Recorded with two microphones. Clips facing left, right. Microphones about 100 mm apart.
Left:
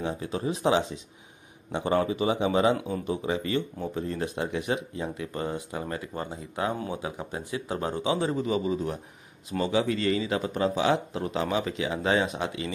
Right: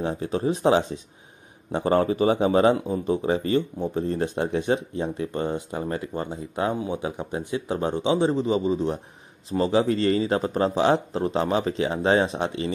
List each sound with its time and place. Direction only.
0.0 s speech: 35° right (ahead or behind)